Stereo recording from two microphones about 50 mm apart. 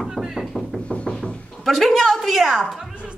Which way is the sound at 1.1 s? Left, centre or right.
Centre.